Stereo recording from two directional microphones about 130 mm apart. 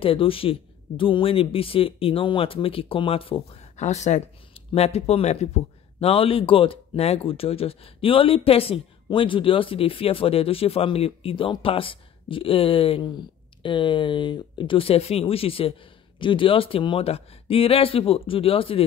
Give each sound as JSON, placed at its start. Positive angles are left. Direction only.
{"t": 0.0, "sound": "a man's voice", "side_deg": 45}
{"t": 3.7, "sound": "speech", "side_deg": 65}
{"t": 4.6, "sound": "a man's voice", "side_deg": 55}